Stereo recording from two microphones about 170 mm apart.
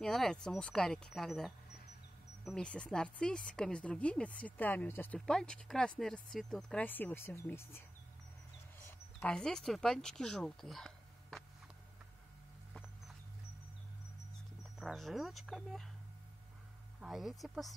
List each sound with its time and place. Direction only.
0.0 s speech: 5° left (ahead or behind)
8.8 s speech: 5° left (ahead or behind)
14.8 s speech: centre (ahead or behind)
17.0 s speech: centre (ahead or behind)